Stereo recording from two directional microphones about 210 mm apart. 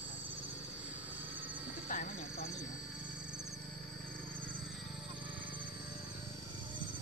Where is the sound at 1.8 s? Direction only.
40° left (ahead or behind).